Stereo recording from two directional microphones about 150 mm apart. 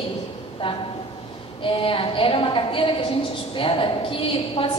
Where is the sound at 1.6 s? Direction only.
35° left (ahead or behind).